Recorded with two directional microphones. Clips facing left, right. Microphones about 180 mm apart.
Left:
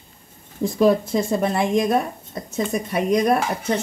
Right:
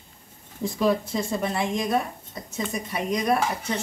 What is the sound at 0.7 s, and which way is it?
A woman's voice, 45° left (ahead or behind).